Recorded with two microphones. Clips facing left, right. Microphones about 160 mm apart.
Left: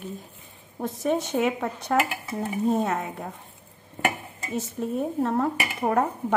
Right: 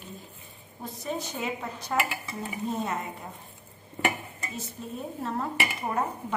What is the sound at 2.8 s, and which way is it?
Speech, 70° left (ahead or behind).